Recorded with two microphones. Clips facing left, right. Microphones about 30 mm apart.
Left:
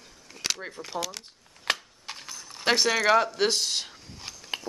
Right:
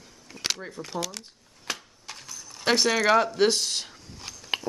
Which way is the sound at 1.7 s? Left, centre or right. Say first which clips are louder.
Left 6 dB; left.